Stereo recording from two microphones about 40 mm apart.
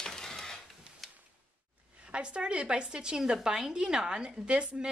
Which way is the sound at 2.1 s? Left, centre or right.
Right.